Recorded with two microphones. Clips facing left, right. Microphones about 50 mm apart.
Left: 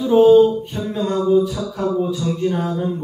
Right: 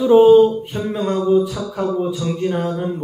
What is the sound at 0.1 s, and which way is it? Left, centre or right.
Speech, centre.